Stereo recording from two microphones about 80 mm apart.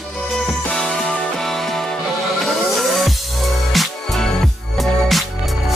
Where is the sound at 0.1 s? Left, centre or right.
Centre.